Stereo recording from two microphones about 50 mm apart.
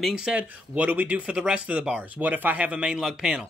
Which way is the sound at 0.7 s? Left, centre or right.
Right.